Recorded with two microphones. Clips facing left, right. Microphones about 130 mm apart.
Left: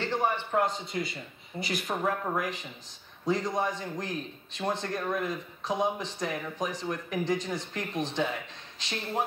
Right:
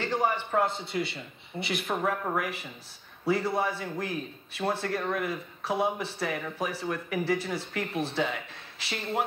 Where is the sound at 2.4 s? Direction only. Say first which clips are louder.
Even; 10° right (ahead or behind).